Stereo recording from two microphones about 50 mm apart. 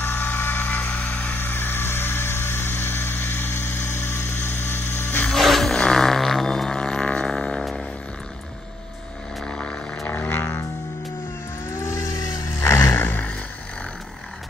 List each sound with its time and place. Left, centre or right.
0.0 s vehicle: left
0.7 s vehicle: left
1.4 s a sound: left
5.4 s vehicle: centre
9.5 s music: centre
11.7 s vehicle: left
12.5 s music: left